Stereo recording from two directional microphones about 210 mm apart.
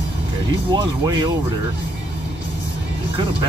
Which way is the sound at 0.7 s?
20° right (ahead or behind).